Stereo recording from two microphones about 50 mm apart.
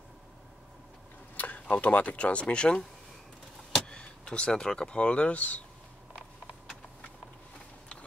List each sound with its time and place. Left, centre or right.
1.3 s speech: left
3.8 s speech: centre